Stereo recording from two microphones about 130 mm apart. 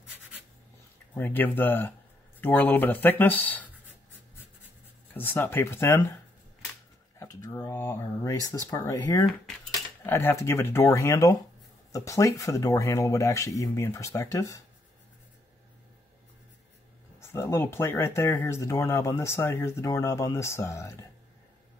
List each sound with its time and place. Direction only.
1.1 s speech: 15° left (ahead or behind)
5.1 s speech: 15° left (ahead or behind)
7.2 s speech: 25° left (ahead or behind)
17.2 s speech: 20° left (ahead or behind)